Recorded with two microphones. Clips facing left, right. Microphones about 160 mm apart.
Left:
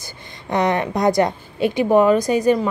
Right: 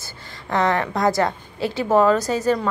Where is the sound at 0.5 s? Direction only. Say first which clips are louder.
Left 1 dB; 20° left (ahead or behind).